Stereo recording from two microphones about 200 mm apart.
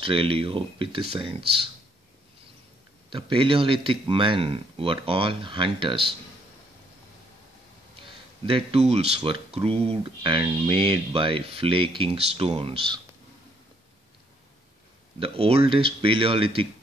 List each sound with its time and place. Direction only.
0.0 s speech: 25° right (ahead or behind)
3.1 s speech: 25° right (ahead or behind)
8.5 s speech: 30° right (ahead or behind)
15.1 s speech: 30° right (ahead or behind)